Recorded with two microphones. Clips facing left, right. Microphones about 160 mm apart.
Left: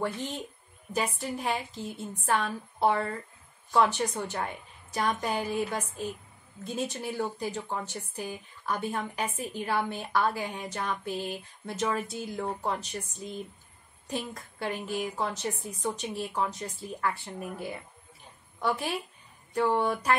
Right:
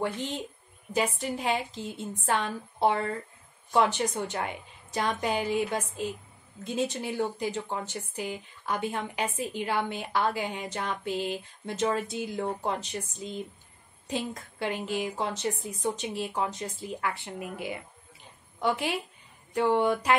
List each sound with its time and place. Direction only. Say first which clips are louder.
0.0 s a woman's voice: right 1 dB; 20° right (ahead or behind)